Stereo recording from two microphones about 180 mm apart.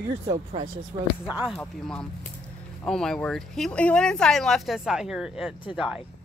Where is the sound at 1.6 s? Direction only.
5° left (ahead or behind).